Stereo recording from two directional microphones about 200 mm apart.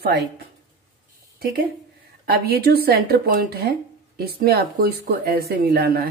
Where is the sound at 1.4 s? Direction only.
50° right (ahead or behind).